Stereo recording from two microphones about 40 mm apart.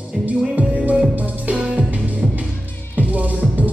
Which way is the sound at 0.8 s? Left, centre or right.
Right.